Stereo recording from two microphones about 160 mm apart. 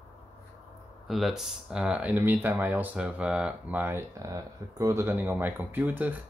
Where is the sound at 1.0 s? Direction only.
Centre (ahead or behind).